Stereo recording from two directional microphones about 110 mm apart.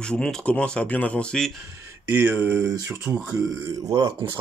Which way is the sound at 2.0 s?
20° right (ahead or behind).